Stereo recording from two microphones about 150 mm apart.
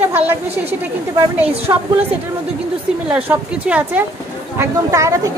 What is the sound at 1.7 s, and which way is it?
Speech, 25° right (ahead or behind).